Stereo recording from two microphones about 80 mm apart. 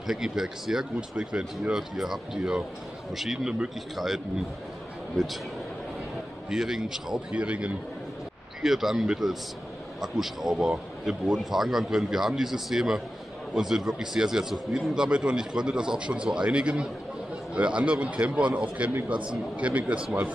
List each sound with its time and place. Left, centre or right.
0.0 s a man's voice: centre
6.5 s a man's voice: centre
8.6 s a man's voice: centre